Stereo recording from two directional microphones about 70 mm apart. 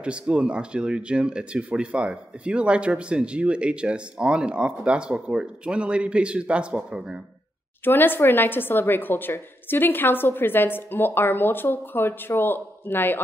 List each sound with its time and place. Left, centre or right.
0.0 s speech: centre
7.8 s speech: left